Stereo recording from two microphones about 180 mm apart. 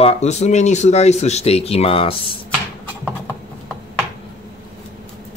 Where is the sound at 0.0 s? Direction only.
40° left (ahead or behind).